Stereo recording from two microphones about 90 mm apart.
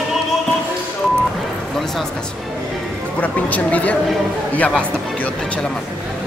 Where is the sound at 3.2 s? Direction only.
15° left (ahead or behind).